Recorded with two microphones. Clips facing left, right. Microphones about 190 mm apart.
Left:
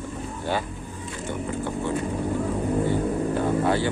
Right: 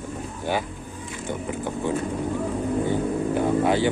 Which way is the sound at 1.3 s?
15° right (ahead or behind).